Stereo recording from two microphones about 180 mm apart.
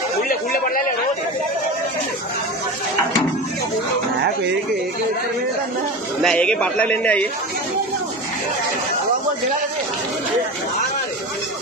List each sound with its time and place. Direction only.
0.3 s speech: 50° left (ahead or behind)
6.2 s a man's voice: 5° left (ahead or behind)